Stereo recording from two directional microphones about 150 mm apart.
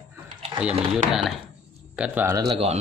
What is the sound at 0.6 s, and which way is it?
Speech, 5° right (ahead or behind).